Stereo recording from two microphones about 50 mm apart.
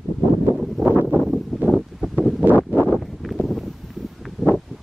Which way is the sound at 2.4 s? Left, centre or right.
Right.